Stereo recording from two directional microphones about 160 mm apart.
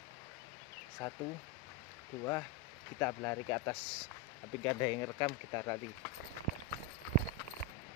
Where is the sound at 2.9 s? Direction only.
15° left (ahead or behind).